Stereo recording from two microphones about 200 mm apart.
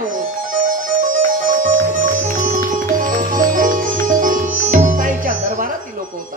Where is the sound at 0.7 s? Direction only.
45° right (ahead or behind).